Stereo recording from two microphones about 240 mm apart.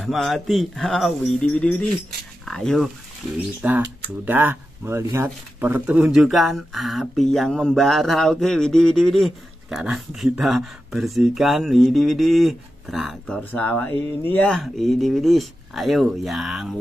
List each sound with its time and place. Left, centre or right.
0.0 s speech: centre